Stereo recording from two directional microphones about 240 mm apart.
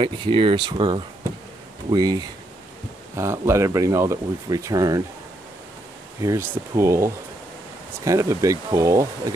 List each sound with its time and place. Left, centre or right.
0.0 s speech: right
6.2 s speech: centre